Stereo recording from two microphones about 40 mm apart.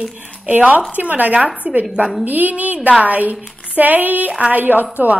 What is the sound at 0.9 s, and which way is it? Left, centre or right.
A woman's voice, right.